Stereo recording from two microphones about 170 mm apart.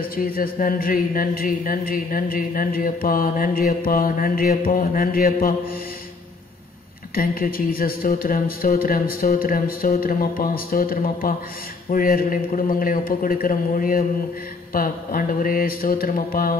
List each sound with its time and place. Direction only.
0.1 s speech: 60° left (ahead or behind)
7.2 s speech: 60° left (ahead or behind)